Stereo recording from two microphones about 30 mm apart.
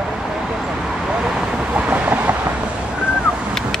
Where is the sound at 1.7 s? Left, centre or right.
Right.